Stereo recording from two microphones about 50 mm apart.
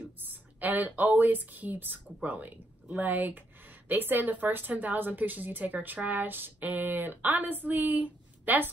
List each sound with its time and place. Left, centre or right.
0.3 s a woman's voice: right